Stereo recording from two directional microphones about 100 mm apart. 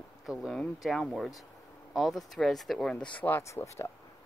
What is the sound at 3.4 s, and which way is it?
Speech, 30° left (ahead or behind).